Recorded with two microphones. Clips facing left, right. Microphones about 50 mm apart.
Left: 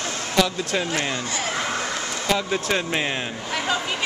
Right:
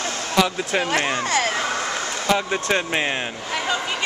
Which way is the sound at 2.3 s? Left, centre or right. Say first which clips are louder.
Right 2 dB; centre.